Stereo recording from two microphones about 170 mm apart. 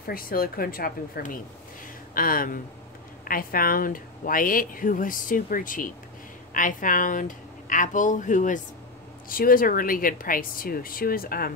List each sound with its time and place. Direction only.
0.0 s speech: 60° left (ahead or behind)